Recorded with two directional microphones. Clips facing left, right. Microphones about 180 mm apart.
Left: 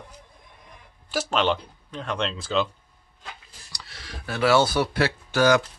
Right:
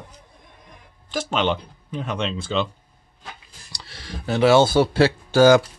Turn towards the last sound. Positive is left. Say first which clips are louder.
# right 6 dB
turn(degrees=-30)  # may be behind; listen again after turning